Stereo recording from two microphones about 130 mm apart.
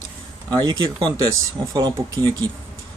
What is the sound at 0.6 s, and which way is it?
Speech, 30° right (ahead or behind).